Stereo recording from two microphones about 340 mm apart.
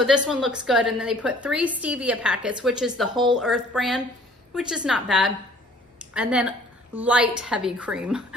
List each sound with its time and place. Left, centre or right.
0.0 s a woman's voice: centre